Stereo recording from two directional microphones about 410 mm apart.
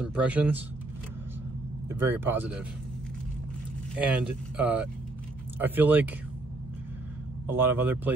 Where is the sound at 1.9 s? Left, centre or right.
Centre.